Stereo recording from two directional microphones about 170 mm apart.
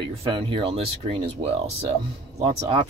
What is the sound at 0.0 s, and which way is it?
Speech, 30° right (ahead or behind).